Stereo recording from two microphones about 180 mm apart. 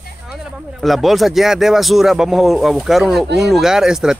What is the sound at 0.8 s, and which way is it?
Speech, centre (ahead or behind).